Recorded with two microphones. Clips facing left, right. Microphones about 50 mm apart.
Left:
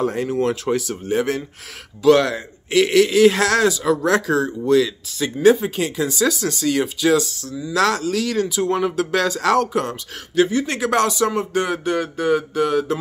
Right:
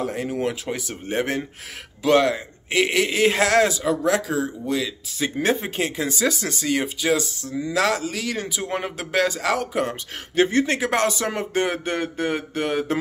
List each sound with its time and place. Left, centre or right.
0.0 s speech: centre
0.3 s speech: centre
0.7 s speech: right
2.0 s speech: centre
3.8 s speech: centre
5.2 s speech: right
10.6 s speech: right